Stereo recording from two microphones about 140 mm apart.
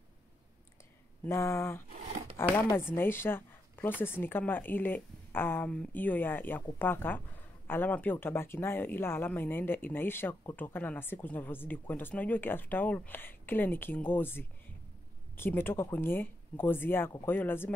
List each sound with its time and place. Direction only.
1.2 s speech: 20° left (ahead or behind)